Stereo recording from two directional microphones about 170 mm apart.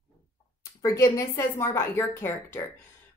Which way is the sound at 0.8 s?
20° left (ahead or behind).